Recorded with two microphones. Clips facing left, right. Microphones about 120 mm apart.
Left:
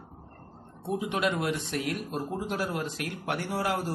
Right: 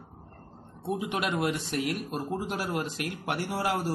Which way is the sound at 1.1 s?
15° right (ahead or behind).